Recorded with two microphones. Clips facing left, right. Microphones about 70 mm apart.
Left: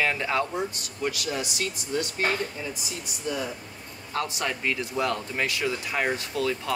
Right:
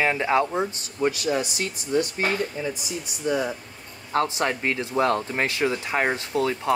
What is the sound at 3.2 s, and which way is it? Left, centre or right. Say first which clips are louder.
Speech: right 6 dB; right.